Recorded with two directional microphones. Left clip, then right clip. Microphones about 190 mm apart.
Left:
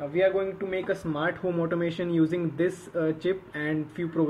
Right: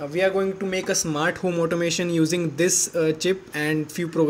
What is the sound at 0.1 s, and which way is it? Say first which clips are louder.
Speech: right 3 dB; 50° right (ahead or behind).